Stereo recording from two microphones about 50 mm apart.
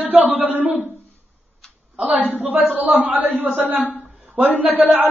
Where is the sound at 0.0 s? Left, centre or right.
Right.